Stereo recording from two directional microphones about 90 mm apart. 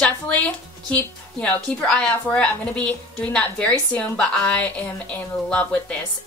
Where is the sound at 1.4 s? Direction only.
10° left (ahead or behind).